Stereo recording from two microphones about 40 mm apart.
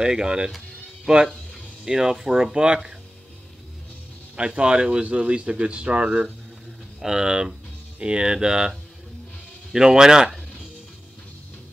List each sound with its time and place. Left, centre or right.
0.0 s speech: centre
4.6 s speech: right
7.0 s speech: centre